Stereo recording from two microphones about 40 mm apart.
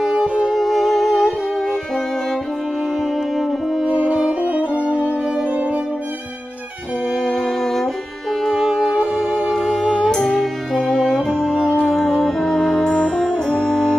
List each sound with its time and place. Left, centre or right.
0.4 s music: centre
3.3 s music: centre
4.3 s music: right
7.2 s music: centre
10.1 s music: centre
11.9 s brass instrument: centre